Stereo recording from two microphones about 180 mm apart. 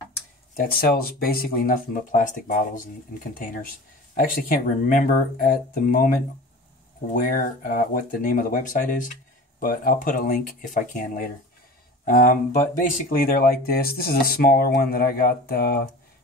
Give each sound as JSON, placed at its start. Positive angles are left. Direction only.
{"t": 0.6, "sound": "speech", "side_deg": 55}
{"t": 7.2, "sound": "speech", "side_deg": 50}